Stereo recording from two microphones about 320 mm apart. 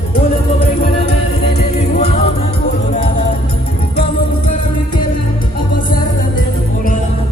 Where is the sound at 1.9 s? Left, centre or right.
Centre.